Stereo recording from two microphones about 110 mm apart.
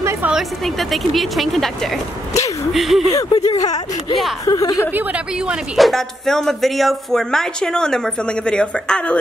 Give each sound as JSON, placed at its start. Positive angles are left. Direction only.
{"t": 0.0, "sound": "a sound", "side_deg": -25}
{"t": 0.3, "sound": "speech", "side_deg": 0}
{"t": 3.3, "sound": "speech", "side_deg": 35}
{"t": 4.9, "sound": "speech", "side_deg": -15}